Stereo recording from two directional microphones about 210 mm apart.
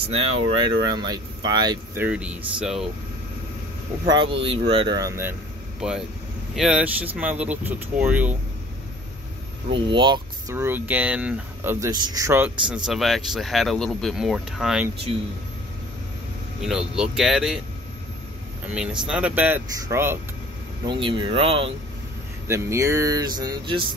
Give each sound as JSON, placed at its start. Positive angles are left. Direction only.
{"t": 0.8, "sound": "speech", "side_deg": -20}
{"t": 2.0, "sound": "speech", "side_deg": -5}
{"t": 4.1, "sound": "speech", "side_deg": -25}
{"t": 5.8, "sound": "speech", "side_deg": -5}
{"t": 9.7, "sound": "speech", "side_deg": -25}
{"t": 15.1, "sound": "speech", "side_deg": -25}
{"t": 16.6, "sound": "speech", "side_deg": -5}
{"t": 18.7, "sound": "speech", "side_deg": -5}
{"t": 20.8, "sound": "speech", "side_deg": -25}
{"t": 22.5, "sound": "speech", "side_deg": -15}